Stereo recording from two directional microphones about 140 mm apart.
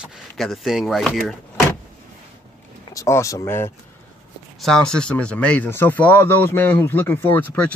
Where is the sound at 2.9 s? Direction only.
20° left (ahead or behind).